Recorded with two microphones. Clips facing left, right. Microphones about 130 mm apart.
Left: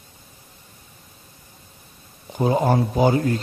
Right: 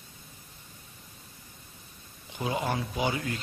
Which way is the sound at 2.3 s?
40° left (ahead or behind).